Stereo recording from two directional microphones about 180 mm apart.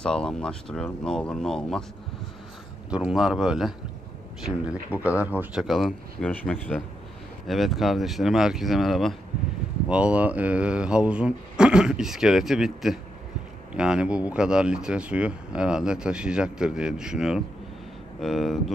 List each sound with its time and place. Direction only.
0.0 s speech: 5° left (ahead or behind)
2.9 s speech: 5° right (ahead or behind)